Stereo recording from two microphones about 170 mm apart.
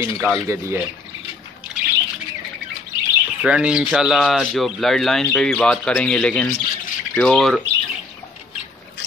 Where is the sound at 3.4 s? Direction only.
5° right (ahead or behind).